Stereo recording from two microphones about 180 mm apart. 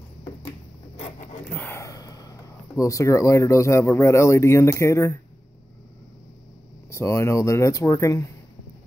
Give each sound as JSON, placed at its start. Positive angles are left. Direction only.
{"t": 0.9, "sound": "zipper", "side_deg": 35}
{"t": 1.5, "sound": "speech", "side_deg": 10}
{"t": 6.9, "sound": "speech", "side_deg": 15}